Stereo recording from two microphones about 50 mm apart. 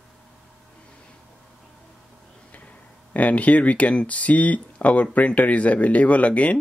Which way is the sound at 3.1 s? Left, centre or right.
Left.